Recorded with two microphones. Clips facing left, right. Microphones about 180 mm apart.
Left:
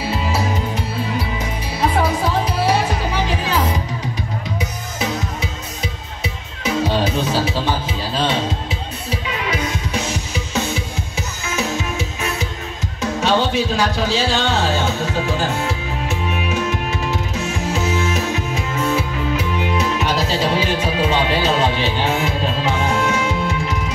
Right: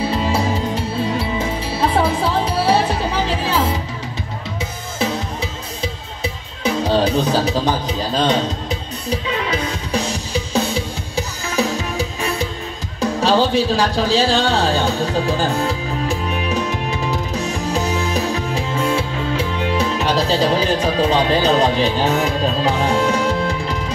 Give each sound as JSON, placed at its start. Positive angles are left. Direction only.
{"t": 1.4, "sound": "music", "side_deg": -30}
{"t": 13.0, "sound": "speech", "side_deg": -35}
{"t": 17.4, "sound": "music", "side_deg": -35}
{"t": 21.5, "sound": "speech", "side_deg": -35}